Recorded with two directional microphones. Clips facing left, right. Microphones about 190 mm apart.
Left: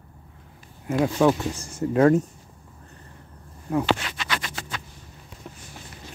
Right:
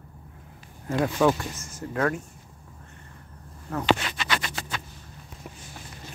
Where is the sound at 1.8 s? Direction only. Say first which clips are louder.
Left 9 dB; 25° left (ahead or behind).